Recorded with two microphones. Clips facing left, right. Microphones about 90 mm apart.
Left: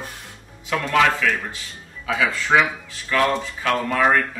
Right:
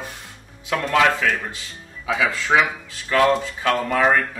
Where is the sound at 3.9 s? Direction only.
15° right (ahead or behind).